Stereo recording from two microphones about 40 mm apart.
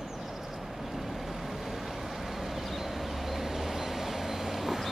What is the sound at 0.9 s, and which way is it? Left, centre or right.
Vehicle, centre.